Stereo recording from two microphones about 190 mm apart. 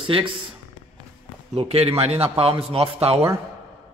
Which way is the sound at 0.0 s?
25° right (ahead or behind).